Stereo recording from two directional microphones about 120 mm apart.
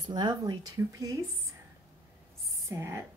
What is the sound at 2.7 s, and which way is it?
Speech, 25° right (ahead or behind).